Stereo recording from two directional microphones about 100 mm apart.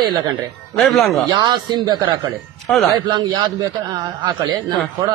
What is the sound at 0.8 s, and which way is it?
Speech, centre (ahead or behind).